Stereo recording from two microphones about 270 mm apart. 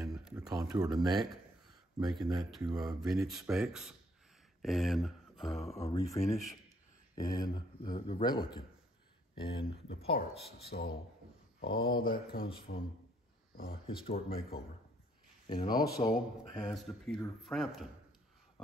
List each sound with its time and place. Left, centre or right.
0.1 s a sound: centre
0.4 s speech: centre
2.0 s speech: centre
2.6 s speech: centre
3.0 s speech: centre
5.8 s speech: centre
6.2 s speech: centre
7.2 s speech: centre
10.1 s speech: left
13.8 s speech: left
16.6 s speech: centre